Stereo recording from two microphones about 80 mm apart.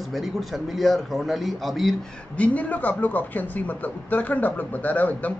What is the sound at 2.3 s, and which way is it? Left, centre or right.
Speech, centre.